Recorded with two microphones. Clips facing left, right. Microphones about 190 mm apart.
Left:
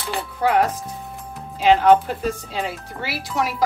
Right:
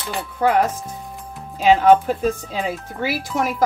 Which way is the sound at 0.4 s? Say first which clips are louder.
Right 1 dB; 45° right (ahead or behind).